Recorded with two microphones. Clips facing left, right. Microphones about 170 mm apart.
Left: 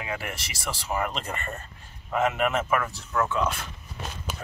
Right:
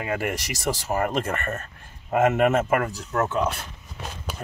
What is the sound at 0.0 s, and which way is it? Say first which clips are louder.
Speech: right 7 dB; 45° right (ahead or behind).